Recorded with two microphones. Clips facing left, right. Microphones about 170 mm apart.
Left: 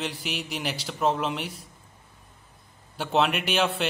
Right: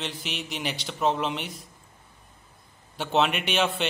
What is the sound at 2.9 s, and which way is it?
Speech, centre (ahead or behind).